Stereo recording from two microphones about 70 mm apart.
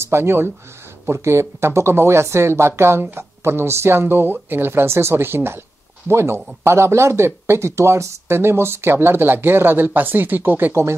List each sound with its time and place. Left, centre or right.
0.0 s speech: right
10.7 s speech: right